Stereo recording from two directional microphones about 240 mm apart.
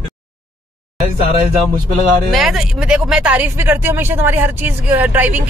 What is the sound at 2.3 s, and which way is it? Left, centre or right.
Speech, centre.